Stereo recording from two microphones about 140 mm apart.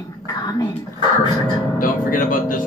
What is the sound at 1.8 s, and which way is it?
Speech, 75° left (ahead or behind).